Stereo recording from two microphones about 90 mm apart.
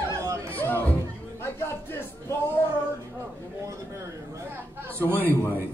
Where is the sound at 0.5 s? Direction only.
20° left (ahead or behind).